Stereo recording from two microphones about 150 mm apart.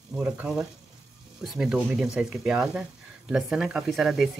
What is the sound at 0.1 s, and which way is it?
Speech, 10° right (ahead or behind).